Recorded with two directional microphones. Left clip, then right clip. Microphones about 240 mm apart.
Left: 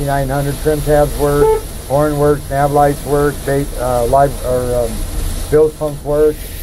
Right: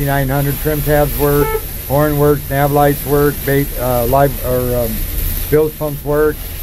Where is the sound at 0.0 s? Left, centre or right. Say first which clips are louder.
Even; right.